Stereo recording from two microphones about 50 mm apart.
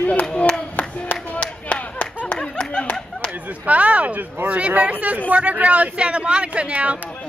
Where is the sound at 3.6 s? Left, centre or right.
Right.